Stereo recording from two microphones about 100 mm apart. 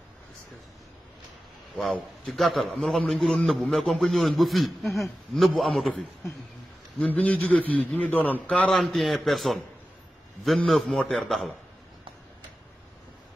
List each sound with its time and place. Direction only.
1.8 s a man's voice: 10° left (ahead or behind)
7.1 s a man's voice: 15° left (ahead or behind)
8.6 s a man's voice: centre (ahead or behind)